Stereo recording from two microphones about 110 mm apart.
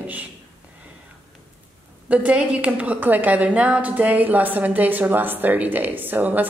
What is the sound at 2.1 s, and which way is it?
A woman's voice, 10° right (ahead or behind).